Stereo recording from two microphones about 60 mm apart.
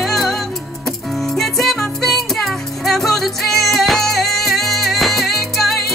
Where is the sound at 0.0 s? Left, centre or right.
Centre.